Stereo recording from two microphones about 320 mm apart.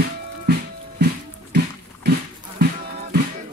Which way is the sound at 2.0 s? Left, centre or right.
Right.